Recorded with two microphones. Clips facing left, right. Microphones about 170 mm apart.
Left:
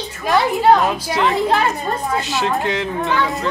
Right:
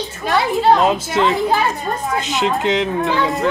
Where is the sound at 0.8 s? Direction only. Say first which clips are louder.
Right 3 dB; 25° right (ahead or behind).